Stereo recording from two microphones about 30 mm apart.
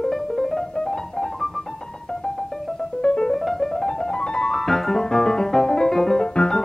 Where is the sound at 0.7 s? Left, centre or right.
Left.